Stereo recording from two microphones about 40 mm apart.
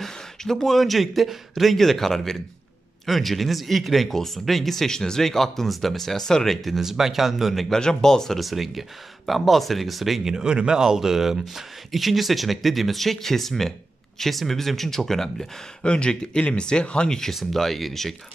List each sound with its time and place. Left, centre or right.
0.0 s speech: centre
6.8 s speech: centre
7.7 s speech: centre
8.4 s speech: centre
15.8 s speech: left
17.3 s speech: centre